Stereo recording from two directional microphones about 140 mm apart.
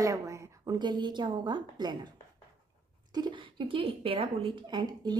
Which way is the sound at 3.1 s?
30° right (ahead or behind).